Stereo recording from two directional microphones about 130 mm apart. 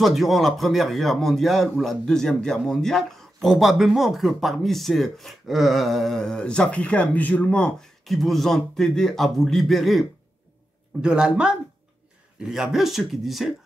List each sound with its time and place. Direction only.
0.0 s a man's voice: centre (ahead or behind)